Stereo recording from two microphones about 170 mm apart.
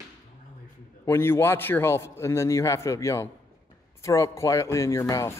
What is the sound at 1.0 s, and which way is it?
A man's voice, 15° left (ahead or behind).